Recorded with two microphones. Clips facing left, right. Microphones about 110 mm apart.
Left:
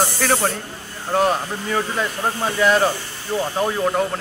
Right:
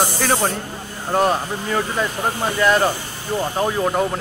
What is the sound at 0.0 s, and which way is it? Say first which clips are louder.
Speech: even; 10° right (ahead or behind).